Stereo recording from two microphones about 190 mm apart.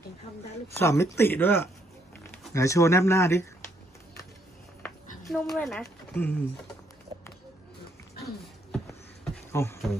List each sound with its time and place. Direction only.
0.7 s speech: 15° left (ahead or behind)
5.3 s speech: centre (ahead or behind)
8.7 s a sound: 5° left (ahead or behind)